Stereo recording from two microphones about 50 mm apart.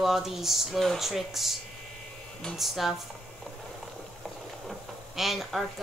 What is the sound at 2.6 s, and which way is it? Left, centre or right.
Speech, centre.